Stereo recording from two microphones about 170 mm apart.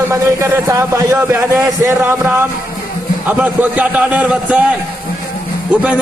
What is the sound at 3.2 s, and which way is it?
Speech, 10° right (ahead or behind).